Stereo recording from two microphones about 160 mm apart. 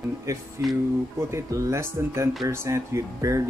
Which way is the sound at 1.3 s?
20° right (ahead or behind).